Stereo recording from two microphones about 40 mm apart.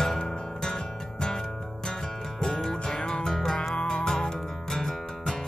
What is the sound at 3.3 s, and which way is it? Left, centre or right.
Music, centre.